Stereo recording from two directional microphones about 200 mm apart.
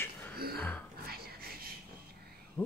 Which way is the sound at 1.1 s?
50° right (ahead or behind).